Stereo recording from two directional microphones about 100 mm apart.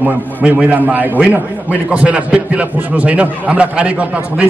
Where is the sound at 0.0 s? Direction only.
15° right (ahead or behind).